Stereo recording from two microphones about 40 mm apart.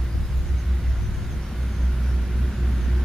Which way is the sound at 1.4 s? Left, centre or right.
Centre.